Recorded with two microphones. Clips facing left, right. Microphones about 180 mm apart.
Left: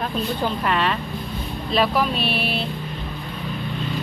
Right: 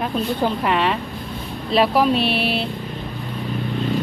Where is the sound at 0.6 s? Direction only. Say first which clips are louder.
Right 2 dB; 20° right (ahead or behind).